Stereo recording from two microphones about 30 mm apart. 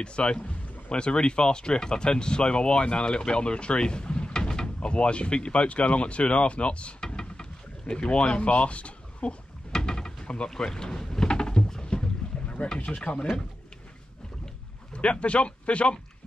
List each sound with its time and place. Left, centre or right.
0.0 s speech: left
4.8 s speech: left
7.0 s a sound: left
7.8 s speech: left
9.7 s a sound: left
10.6 s boat: left
12.3 s boat: left
12.8 s speech: left
15.0 s speech: left